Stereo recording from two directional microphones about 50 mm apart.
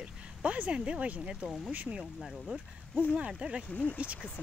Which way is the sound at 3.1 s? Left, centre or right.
Centre.